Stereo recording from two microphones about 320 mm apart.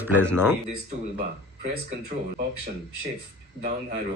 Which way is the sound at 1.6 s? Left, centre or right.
Right.